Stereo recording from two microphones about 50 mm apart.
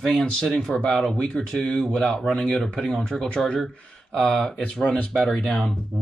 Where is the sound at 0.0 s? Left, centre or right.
Centre.